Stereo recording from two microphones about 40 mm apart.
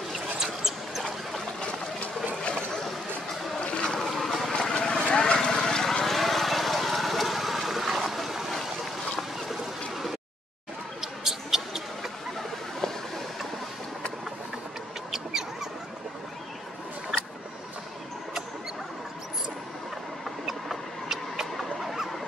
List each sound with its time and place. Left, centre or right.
0.1 s mouse: centre
2.4 s a sound: left
3.6 s boat: left
4.2 s boat: centre
4.5 s vehicle: centre
9.5 s a sound: centre
11.0 s mouse: centre
15.0 s mouse: centre
20.4 s rodents: centre
21.5 s a sound: centre